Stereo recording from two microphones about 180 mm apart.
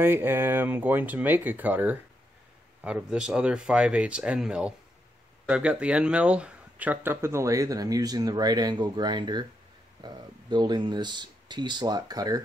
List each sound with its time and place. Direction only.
0.0 s speech: 10° right (ahead or behind)